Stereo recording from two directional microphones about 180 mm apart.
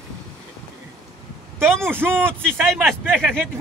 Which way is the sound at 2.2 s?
5° left (ahead or behind).